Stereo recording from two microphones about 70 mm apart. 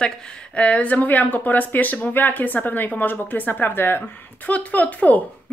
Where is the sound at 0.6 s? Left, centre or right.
Centre.